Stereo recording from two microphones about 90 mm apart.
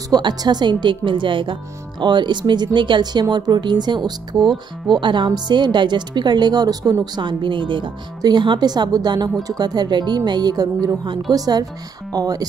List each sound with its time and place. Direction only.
0.1 s speech: 50° right (ahead or behind); by 7.9 s 65° right (ahead or behind)
8.2 s speech: 55° right (ahead or behind)